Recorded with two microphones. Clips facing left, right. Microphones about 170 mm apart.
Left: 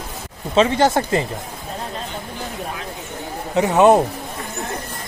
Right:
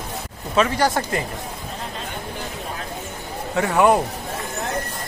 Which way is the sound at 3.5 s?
20° left (ahead or behind).